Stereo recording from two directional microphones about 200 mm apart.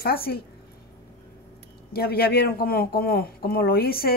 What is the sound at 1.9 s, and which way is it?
Speech, 50° left (ahead or behind).